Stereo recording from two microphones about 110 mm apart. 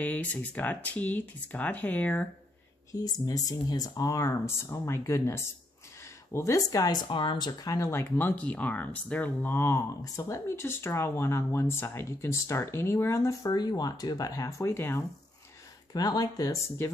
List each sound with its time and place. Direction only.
0.0 s speech: 15° left (ahead or behind)
2.9 s speech: 35° left (ahead or behind)
15.9 s speech: 35° left (ahead or behind)